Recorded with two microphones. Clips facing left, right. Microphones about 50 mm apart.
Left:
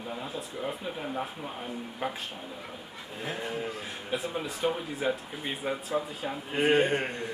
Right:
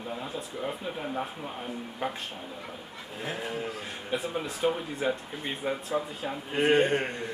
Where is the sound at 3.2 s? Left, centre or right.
Centre.